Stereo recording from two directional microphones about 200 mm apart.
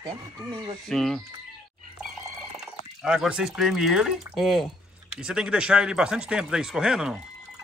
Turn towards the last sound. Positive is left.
turn(degrees=-5)  # may be behind; listen again after turning